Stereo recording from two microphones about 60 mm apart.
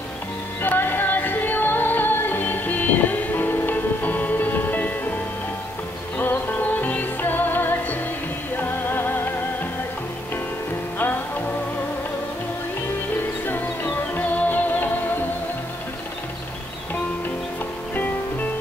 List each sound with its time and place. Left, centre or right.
0.6 s music: left
13.5 s music: left
17.9 s music: left